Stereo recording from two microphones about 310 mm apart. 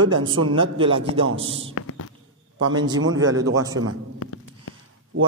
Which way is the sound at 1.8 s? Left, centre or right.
Left.